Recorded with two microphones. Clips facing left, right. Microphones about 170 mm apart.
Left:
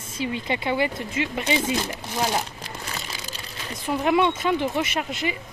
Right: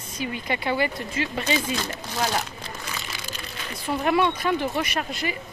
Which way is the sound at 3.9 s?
20° left (ahead or behind).